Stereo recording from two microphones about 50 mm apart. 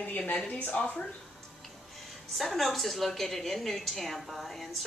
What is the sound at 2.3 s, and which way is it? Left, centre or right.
A woman's voice, centre.